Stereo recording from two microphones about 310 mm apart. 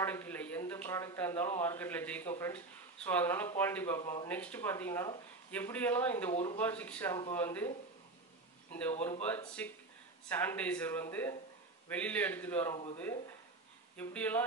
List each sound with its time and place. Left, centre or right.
0.0 s speech: centre
6.3 s speech: centre
6.6 s speech: centre
9.2 s speech: centre
13.9 s speech: centre